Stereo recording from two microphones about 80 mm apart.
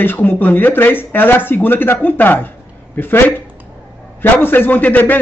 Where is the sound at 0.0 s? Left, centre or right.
Left.